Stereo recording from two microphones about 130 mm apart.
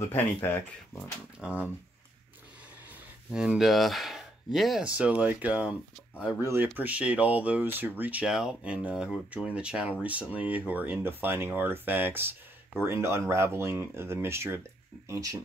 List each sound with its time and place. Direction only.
0.1 s speech: 15° left (ahead or behind)
1.4 s speech: 10° right (ahead or behind)
3.3 s speech: 5° right (ahead or behind); by 15.3 s 25° right (ahead or behind)